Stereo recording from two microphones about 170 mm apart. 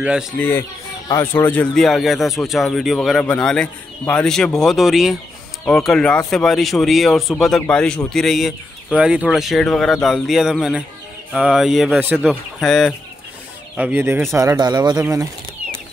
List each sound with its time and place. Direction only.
0.0 s speech: 5° right (ahead or behind)
0.4 s speech: 10° left (ahead or behind)
13.7 s speech: 10° right (ahead or behind)